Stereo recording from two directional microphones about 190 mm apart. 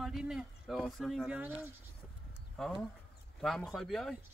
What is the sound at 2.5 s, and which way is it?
Speech, centre (ahead or behind).